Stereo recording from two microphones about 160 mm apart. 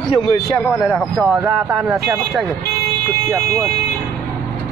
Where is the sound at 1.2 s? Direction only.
15° right (ahead or behind).